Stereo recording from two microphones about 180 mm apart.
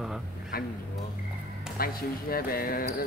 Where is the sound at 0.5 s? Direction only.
55° left (ahead or behind).